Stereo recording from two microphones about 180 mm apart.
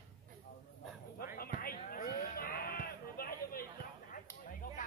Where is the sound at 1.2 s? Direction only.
55° left (ahead or behind).